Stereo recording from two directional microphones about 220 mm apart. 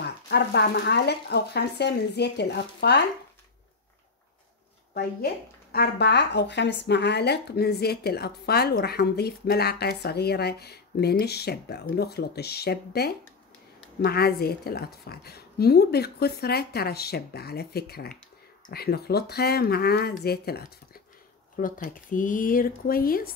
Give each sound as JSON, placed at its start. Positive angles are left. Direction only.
{"t": 0.0, "sound": "speech", "side_deg": 50}
{"t": 4.9, "sound": "speech", "side_deg": 45}